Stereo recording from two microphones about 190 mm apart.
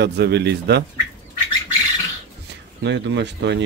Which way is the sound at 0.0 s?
60° right (ahead or behind).